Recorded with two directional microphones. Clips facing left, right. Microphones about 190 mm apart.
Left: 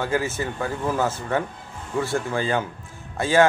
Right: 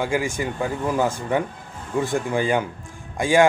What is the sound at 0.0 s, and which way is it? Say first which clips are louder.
Speech: right 1 dB; 15° right (ahead or behind).